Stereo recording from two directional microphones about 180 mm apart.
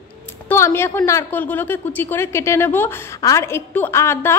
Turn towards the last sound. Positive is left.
turn(degrees=15)  # may be behind; listen again after turning